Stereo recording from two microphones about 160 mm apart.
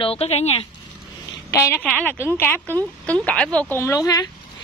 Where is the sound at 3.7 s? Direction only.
15° left (ahead or behind).